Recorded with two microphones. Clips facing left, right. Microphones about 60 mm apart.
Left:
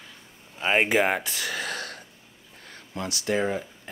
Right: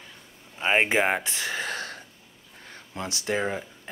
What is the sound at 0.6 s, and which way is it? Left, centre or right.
Speech, right.